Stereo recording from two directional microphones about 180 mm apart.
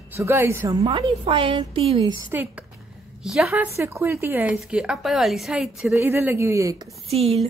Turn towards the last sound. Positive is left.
turn(degrees=-35)  # may be behind; listen again after turning